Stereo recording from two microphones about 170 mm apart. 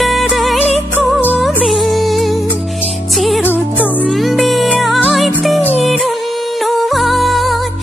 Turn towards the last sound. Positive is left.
turn(degrees=0)  # may be behind; listen again after turning